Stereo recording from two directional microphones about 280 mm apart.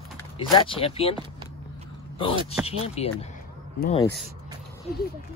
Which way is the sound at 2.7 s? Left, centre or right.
Left.